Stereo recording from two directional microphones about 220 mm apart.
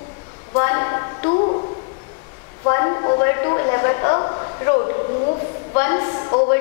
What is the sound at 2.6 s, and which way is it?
A woman's voice, 20° left (ahead or behind).